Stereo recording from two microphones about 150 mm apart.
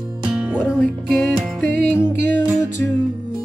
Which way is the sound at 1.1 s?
10° left (ahead or behind).